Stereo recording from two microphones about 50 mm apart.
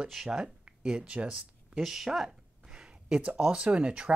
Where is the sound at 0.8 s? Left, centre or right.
Right.